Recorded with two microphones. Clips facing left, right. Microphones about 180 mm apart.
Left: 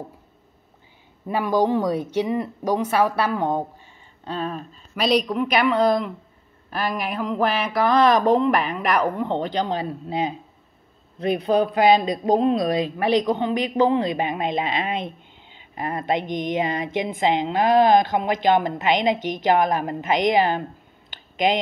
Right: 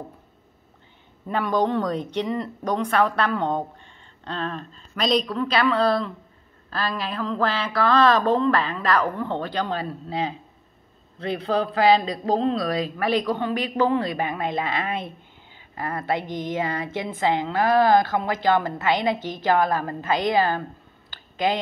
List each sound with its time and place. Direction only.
1.2 s speech: 10° left (ahead or behind)